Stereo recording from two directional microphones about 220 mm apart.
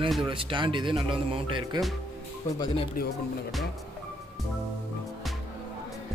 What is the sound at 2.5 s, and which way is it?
Speech, 20° left (ahead or behind).